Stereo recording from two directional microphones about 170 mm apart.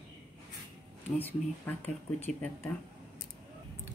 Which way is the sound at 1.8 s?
10° left (ahead or behind).